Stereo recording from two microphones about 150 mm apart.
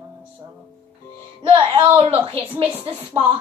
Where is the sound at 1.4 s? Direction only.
35° right (ahead or behind).